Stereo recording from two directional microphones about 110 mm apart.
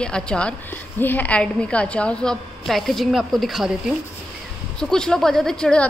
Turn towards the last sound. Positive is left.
turn(degrees=10)  # may be behind; listen again after turning